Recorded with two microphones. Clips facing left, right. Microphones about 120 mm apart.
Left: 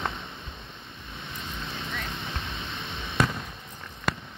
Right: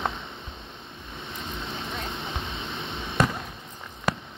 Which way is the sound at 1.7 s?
15° right (ahead or behind).